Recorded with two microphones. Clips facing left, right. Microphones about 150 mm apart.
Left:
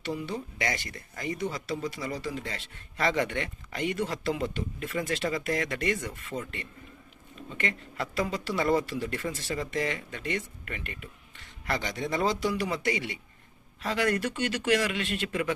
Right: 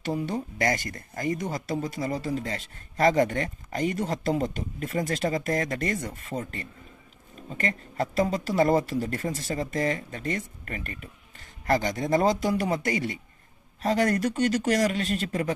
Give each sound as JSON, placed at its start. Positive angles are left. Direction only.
{"t": 0.0, "sound": "speech", "side_deg": -45}